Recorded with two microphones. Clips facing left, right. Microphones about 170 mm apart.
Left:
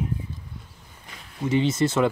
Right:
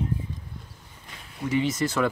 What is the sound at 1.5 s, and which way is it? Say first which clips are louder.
Speech: left 3 dB; 25° left (ahead or behind).